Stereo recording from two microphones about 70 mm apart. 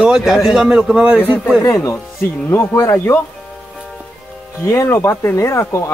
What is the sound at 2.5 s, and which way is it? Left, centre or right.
Speech, left.